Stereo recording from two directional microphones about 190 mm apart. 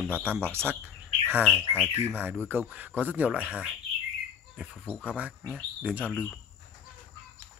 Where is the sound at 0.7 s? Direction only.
10° right (ahead or behind).